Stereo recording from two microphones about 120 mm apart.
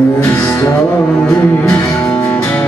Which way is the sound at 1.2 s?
10° left (ahead or behind).